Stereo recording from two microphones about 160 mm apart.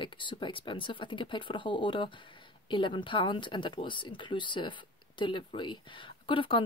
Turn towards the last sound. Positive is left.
turn(degrees=30)  # may be behind; listen again after turning